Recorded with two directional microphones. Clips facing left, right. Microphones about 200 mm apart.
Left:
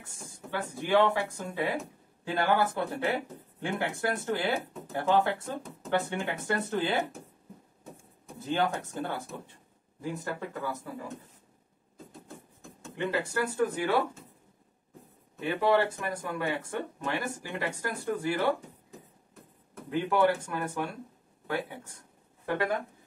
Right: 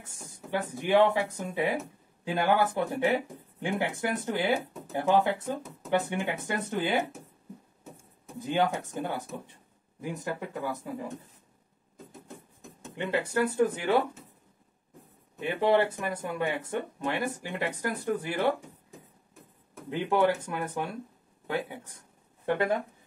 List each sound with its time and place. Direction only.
0.0 s speech: 20° right (ahead or behind)
8.4 s speech: 15° right (ahead or behind)
12.8 s speech: 20° right (ahead or behind)
15.4 s speech: 20° right (ahead or behind)
19.7 s speech: 20° right (ahead or behind)